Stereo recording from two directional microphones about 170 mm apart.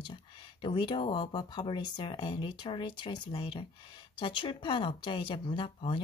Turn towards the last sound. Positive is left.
turn(degrees=30)  # may be behind; listen again after turning